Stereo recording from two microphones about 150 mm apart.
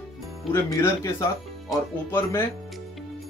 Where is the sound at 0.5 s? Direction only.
20° left (ahead or behind).